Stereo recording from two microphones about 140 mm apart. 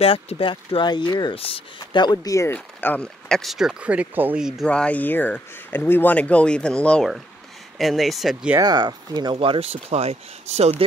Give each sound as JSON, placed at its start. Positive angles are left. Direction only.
{"t": 0.0, "sound": "speech", "side_deg": 45}
{"t": 2.5, "sound": "speech", "side_deg": 10}
{"t": 4.6, "sound": "speech", "side_deg": 10}
{"t": 8.5, "sound": "speech", "side_deg": -30}